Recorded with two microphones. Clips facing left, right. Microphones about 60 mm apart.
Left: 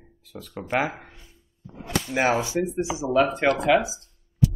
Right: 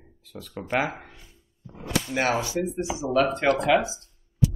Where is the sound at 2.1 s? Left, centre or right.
Centre.